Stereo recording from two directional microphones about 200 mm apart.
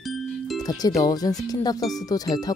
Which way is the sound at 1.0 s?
20° left (ahead or behind).